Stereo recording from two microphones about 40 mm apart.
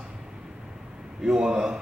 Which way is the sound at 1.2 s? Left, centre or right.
Centre.